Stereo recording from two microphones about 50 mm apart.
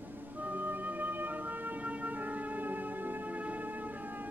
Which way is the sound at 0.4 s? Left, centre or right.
Right.